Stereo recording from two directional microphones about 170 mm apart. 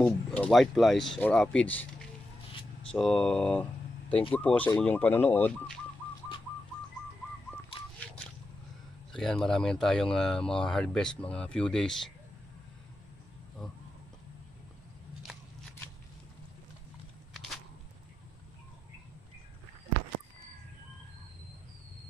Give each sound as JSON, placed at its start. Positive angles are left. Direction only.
{"t": 0.0, "sound": "speech", "side_deg": 5}
{"t": 2.9, "sound": "speech", "side_deg": 5}
{"t": 9.1, "sound": "speech", "side_deg": 5}